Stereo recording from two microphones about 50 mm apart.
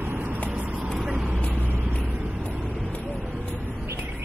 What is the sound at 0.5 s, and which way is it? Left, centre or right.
Vehicle, right.